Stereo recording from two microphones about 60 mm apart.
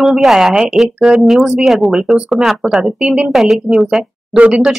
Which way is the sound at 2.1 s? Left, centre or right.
Right.